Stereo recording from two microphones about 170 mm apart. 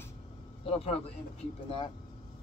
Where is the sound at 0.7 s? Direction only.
35° left (ahead or behind).